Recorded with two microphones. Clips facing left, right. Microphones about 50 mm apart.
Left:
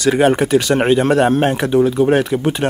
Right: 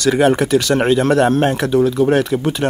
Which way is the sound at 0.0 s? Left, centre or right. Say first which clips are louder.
Even; centre.